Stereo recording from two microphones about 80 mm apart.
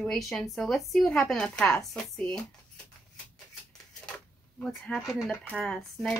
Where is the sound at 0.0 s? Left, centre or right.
Centre.